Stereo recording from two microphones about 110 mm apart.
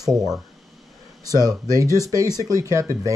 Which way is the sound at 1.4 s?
35° right (ahead or behind).